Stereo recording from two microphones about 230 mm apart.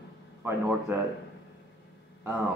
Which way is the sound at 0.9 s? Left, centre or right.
Centre.